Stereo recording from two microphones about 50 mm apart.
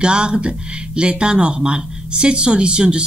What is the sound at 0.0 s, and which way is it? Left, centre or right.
Speech, centre.